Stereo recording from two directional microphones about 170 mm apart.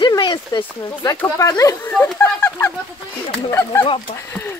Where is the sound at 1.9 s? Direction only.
15° left (ahead or behind).